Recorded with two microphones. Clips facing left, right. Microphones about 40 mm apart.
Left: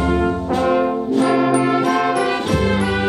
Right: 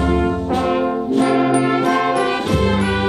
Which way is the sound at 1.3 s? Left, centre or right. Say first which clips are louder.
Even; right.